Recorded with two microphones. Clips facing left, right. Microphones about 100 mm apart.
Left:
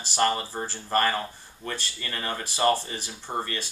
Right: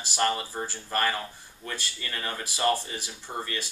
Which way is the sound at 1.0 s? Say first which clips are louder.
Left 2 dB; 30° left (ahead or behind).